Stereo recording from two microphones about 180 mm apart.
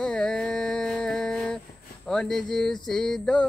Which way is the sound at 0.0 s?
5° left (ahead or behind).